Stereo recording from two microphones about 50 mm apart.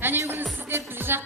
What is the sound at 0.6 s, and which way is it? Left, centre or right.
Music, right.